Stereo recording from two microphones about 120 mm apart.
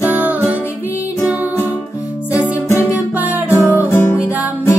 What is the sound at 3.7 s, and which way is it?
Music, 20° left (ahead or behind).